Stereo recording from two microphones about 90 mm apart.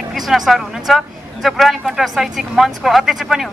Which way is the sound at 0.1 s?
Centre (ahead or behind).